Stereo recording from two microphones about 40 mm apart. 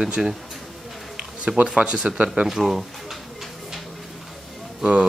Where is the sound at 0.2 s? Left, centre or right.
Centre.